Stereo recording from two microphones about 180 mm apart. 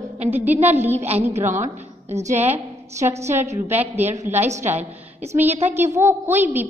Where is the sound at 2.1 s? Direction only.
40° right (ahead or behind).